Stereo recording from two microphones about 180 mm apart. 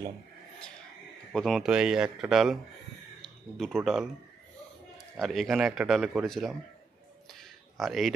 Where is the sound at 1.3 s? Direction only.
Centre (ahead or behind).